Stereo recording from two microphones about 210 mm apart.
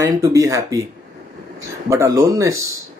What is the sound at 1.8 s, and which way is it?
Speech, 15° right (ahead or behind).